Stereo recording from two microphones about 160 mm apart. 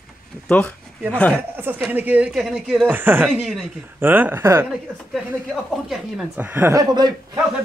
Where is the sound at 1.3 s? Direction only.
15° right (ahead or behind).